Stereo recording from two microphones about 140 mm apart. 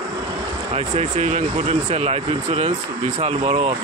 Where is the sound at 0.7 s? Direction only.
55° right (ahead or behind).